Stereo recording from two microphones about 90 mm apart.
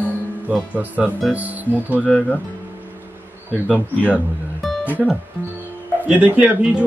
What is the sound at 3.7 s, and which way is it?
Speech, 15° right (ahead or behind).